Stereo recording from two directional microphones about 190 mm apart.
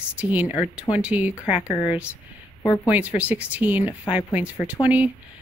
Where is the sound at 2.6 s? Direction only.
20° left (ahead or behind).